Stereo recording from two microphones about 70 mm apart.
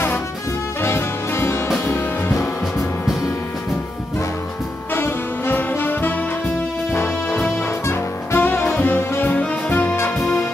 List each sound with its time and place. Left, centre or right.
0.8 s music: left
4.9 s brass instrument: left
7.4 s saxophone: left